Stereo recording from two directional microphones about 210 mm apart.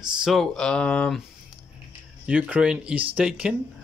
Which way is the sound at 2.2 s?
5° right (ahead or behind).